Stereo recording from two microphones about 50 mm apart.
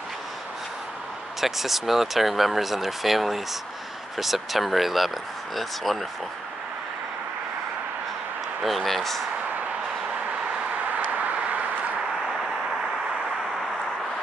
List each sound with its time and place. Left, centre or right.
1.4 s speech: centre
8.6 s speech: centre
11.1 s vehicle: right